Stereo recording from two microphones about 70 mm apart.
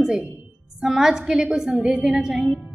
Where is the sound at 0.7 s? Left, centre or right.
Centre.